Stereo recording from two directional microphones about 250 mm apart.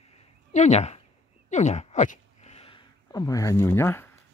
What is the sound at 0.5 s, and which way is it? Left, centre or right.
Speech, left.